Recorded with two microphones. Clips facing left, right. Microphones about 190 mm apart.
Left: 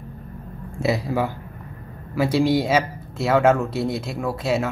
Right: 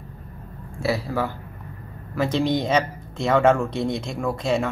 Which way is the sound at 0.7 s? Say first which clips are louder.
Left 2 dB; 20° left (ahead or behind).